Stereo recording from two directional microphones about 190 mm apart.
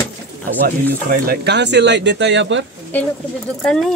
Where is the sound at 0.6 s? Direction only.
50° right (ahead or behind); by 2.6 s 70° right (ahead or behind).